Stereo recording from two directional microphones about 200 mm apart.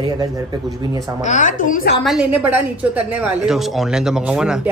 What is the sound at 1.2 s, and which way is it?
Speech, 40° left (ahead or behind).